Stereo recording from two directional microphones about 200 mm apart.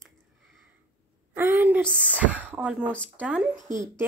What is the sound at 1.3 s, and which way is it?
Speech, 10° right (ahead or behind).